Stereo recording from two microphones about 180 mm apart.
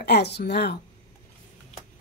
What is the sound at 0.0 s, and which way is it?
Speech, 70° left (ahead or behind).